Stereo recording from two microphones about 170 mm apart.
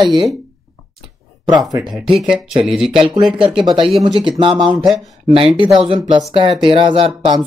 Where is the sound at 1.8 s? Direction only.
5° right (ahead or behind).